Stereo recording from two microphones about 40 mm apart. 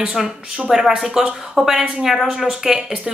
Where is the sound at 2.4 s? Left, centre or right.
Centre.